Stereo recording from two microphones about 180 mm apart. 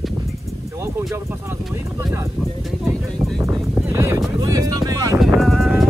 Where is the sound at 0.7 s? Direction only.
15° right (ahead or behind).